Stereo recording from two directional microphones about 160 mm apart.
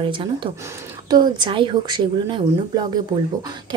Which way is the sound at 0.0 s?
30° right (ahead or behind).